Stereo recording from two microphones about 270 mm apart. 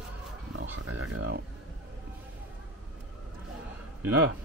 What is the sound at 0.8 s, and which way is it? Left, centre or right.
Speech, right.